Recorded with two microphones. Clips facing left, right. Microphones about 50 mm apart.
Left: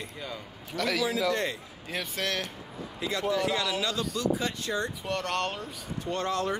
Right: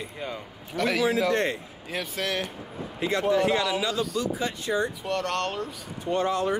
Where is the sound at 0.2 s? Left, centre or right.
Right.